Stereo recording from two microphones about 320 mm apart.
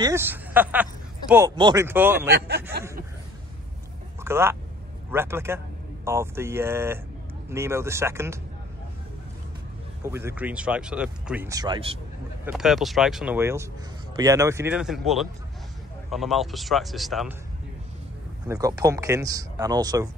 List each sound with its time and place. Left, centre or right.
0.0 s speech: centre
2.3 s speech: right
4.2 s speech: centre
10.0 s speech: centre
12.4 s speech: centre
18.5 s speech: centre